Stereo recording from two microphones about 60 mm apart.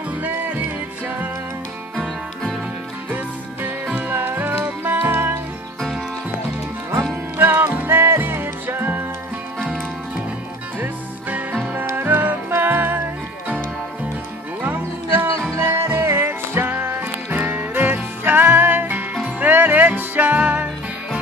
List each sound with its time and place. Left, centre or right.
3.6 s music: right
5.8 s music: centre
7.3 s music: right
10.8 s music: right
14.6 s music: right